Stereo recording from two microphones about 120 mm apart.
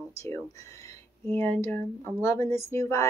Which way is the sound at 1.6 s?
15° left (ahead or behind).